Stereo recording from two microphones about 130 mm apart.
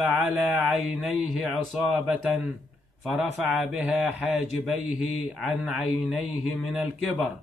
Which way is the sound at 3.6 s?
5° right (ahead or behind).